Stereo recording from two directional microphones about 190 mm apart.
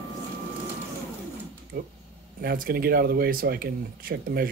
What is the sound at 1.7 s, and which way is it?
Speech, 50° right (ahead or behind).